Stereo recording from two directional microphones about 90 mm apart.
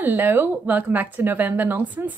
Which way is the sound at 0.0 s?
25° right (ahead or behind).